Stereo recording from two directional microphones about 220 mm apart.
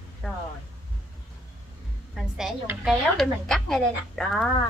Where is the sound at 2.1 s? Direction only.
Centre (ahead or behind).